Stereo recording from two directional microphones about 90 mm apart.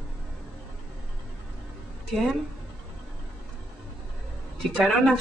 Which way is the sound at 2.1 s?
Centre (ahead or behind).